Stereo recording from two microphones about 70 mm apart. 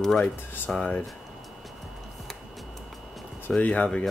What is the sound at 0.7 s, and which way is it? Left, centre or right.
Speech, centre.